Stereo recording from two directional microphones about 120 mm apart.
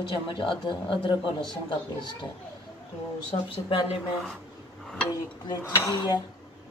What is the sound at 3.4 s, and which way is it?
Speech, 45° left (ahead or behind).